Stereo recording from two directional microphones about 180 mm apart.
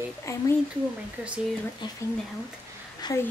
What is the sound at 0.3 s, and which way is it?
Speech, 15° left (ahead or behind).